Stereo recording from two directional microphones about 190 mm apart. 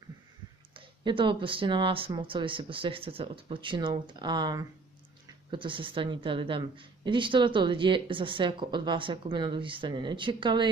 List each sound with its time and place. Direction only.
0.7 s a woman's voice: 25° right (ahead or behind)